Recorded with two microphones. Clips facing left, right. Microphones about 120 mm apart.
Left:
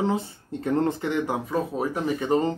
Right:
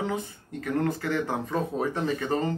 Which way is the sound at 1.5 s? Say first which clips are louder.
Left 2 dB; 10° left (ahead or behind).